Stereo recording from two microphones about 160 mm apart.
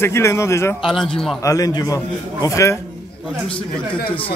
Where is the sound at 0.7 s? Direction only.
Centre (ahead or behind).